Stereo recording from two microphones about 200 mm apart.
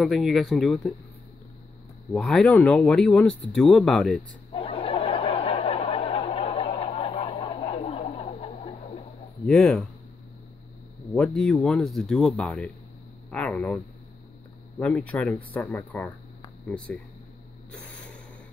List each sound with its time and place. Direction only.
0.0 s speech: centre (ahead or behind)
2.1 s speech: 5° left (ahead or behind)
4.5 s snicker: 30° left (ahead or behind)
9.5 s speech: centre (ahead or behind)
11.1 s speech: 5° left (ahead or behind)
14.8 s speech: 5° left (ahead or behind)